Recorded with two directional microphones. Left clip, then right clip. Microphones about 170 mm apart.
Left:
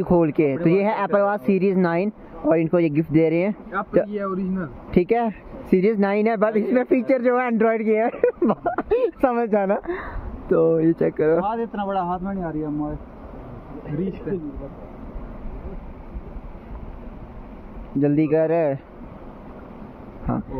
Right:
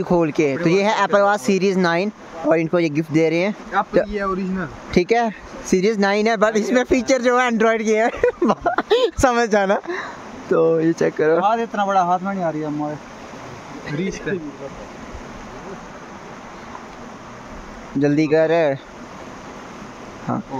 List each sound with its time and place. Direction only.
0.0 s speech: 15° right (ahead or behind)
11.3 s speech: 35° right (ahead or behind)
18.0 s speech: 20° right (ahead or behind)
20.3 s speech: 15° right (ahead or behind)